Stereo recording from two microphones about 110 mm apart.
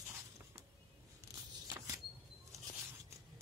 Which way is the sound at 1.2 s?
25° right (ahead or behind).